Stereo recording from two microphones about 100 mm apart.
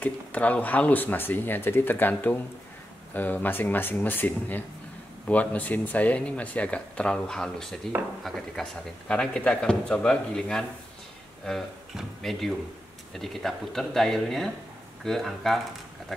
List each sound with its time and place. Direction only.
0.0 s speech: 15° left (ahead or behind)